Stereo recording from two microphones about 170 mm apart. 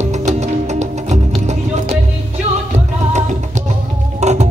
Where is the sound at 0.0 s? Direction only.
40° right (ahead or behind).